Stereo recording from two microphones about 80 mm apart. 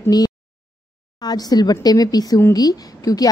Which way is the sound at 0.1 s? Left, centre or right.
Left.